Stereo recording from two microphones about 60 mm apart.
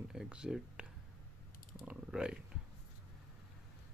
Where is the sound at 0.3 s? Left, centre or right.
Centre.